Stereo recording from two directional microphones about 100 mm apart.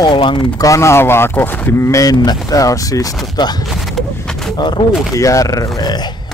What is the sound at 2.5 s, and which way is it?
Speech, 35° left (ahead or behind).